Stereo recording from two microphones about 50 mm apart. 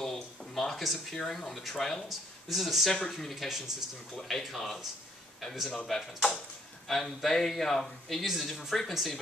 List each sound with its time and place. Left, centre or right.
0.0 s a sound: centre
1.2 s speech: centre
1.5 s speech: centre
2.0 s a man's voice: centre
2.9 s a man's voice: centre